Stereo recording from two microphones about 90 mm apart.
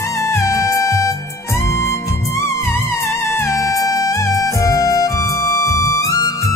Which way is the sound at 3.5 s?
40° left (ahead or behind).